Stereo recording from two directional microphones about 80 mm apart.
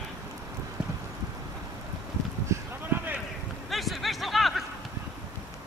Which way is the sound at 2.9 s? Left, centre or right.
Right.